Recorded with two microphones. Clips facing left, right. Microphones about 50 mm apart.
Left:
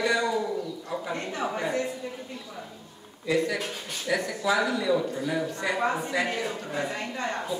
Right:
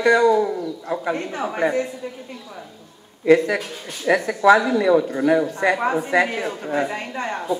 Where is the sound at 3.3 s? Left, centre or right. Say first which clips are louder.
Right 11 dB; right.